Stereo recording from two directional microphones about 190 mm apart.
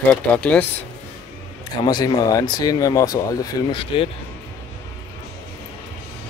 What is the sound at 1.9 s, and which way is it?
Speech, 20° left (ahead or behind).